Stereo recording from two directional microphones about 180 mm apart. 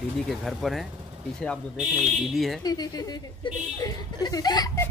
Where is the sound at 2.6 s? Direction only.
20° left (ahead or behind).